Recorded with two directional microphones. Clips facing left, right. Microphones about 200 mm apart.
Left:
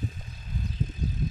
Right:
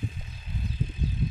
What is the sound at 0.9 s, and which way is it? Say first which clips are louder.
Vehicle: right 1 dB; 40° left (ahead or behind).